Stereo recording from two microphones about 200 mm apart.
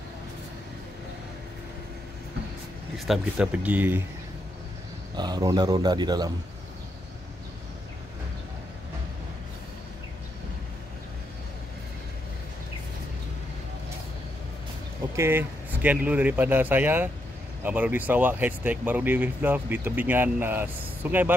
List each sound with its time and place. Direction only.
3.1 s speech: 5° right (ahead or behind)
5.1 s speech: 20° right (ahead or behind)
15.1 s speech: 10° right (ahead or behind)